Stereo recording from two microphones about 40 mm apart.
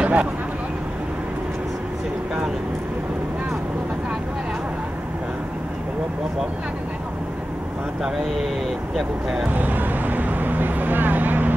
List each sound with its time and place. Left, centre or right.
0.0 s vehicle: right
9.5 s speech: right